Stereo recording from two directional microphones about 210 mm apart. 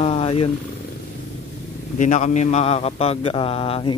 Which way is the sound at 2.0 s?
35° left (ahead or behind).